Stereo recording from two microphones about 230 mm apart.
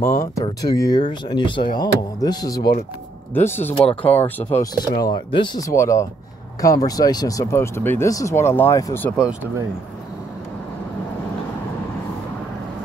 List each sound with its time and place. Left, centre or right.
0.0 s speech: centre
4.4 s speech: left